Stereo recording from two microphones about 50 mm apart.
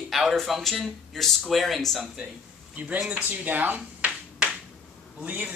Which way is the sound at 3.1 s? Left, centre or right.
Right.